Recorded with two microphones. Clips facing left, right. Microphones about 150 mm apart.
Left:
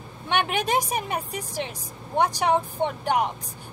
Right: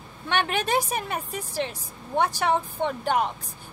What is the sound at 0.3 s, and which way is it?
A child's voice, 15° left (ahead or behind).